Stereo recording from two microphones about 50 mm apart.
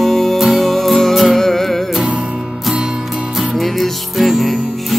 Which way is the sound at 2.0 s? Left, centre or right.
Right.